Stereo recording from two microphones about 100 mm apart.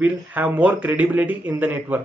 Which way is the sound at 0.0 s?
15° right (ahead or behind).